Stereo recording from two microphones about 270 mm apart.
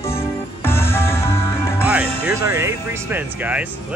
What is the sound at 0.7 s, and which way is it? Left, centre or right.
Music, centre.